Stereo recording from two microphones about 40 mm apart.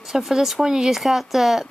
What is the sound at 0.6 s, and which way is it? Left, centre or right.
Speech, centre.